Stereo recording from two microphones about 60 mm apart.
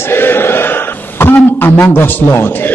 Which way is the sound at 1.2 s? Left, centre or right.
Left.